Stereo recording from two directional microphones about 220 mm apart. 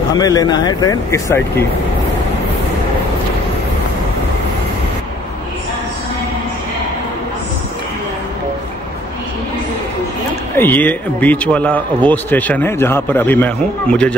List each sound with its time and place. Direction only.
0.2 s speech: 15° left (ahead or behind)
10.5 s speech: 10° left (ahead or behind)